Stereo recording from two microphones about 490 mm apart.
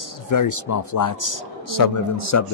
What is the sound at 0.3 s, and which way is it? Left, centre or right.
A man's voice, left.